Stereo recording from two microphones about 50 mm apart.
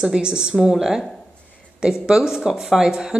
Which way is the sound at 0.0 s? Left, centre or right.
Centre.